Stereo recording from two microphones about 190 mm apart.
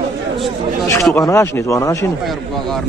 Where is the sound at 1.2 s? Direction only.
15° left (ahead or behind).